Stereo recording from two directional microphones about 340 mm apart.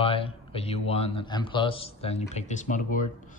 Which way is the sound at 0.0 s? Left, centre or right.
Centre.